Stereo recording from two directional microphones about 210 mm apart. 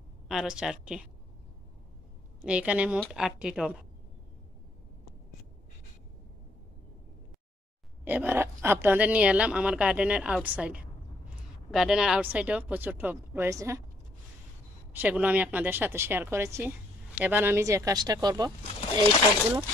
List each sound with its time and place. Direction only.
0.3 s speech: centre (ahead or behind)
2.4 s speech: 5° right (ahead or behind)
8.0 s a woman's voice: 10° right (ahead or behind)
14.9 s a woman's voice: 10° right (ahead or behind)
18.8 s speech: 25° left (ahead or behind)